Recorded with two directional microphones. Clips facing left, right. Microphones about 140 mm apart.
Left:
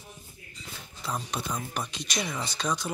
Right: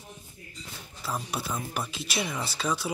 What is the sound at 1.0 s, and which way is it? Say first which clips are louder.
Speech: even; 5° right (ahead or behind).